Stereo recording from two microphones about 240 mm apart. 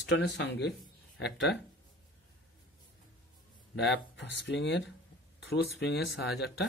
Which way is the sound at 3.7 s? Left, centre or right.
Left.